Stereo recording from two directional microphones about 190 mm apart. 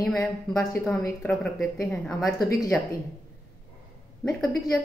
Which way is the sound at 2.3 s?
20° left (ahead or behind).